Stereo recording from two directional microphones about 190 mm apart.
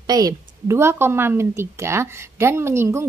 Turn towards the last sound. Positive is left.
turn(degrees=-15)  # may be behind; listen again after turning